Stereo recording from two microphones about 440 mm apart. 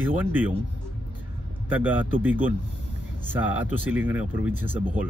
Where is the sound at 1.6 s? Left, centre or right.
Centre.